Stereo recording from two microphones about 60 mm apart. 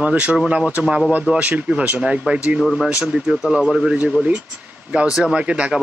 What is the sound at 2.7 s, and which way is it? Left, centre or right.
Speech, centre.